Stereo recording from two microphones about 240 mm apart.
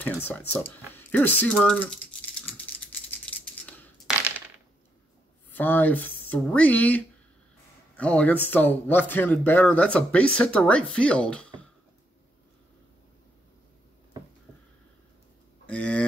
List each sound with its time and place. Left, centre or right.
0.0 s speech: centre
2.4 s scissors: centre
5.5 s speech: centre
15.6 s a sound: centre